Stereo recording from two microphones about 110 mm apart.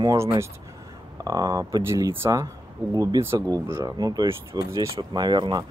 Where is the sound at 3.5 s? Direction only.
35° right (ahead or behind).